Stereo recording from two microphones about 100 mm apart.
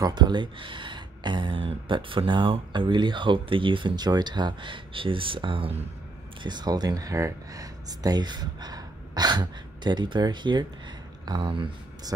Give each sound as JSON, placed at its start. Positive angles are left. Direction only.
{"t": 0.0, "sound": "speech", "side_deg": -45}
{"t": 6.4, "sound": "speech", "side_deg": -45}